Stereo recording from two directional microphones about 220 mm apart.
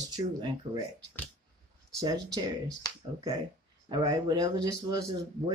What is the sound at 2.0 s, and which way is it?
Speech, 15° right (ahead or behind).